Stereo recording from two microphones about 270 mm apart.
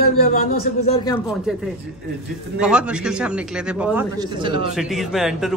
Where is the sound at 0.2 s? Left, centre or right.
Left.